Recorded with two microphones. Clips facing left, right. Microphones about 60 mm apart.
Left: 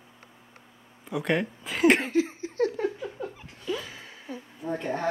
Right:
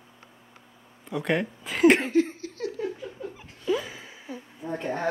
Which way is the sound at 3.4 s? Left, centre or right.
Centre.